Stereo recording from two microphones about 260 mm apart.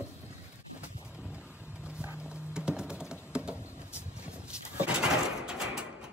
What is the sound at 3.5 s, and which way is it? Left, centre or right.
Vehicle, centre.